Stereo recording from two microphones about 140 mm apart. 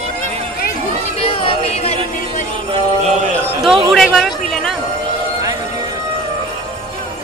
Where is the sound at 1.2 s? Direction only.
45° left (ahead or behind).